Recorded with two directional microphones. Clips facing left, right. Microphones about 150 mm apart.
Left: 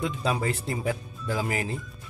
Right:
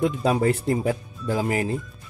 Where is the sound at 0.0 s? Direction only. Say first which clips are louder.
Right 7 dB; 50° right (ahead or behind).